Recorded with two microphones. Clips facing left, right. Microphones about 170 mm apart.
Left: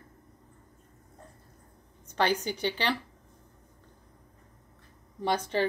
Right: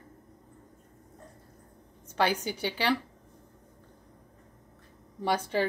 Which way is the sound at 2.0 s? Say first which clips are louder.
Even; 10° right (ahead or behind).